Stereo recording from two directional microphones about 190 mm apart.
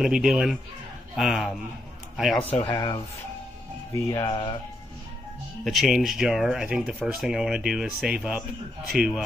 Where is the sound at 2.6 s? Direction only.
25° left (ahead or behind).